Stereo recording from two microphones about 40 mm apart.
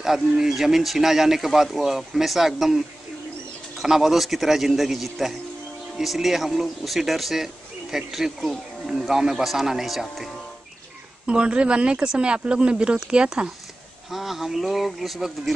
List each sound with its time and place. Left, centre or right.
0.0 s speech: centre
3.8 s speech: centre
11.2 s speech: right
14.1 s speech: centre